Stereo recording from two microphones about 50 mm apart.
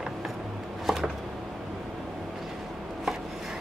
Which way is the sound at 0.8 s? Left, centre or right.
Centre.